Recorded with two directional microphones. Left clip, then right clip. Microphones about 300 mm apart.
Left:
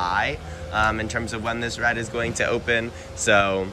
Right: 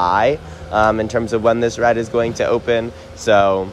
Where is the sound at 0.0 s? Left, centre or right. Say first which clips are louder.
Right 9 dB; centre.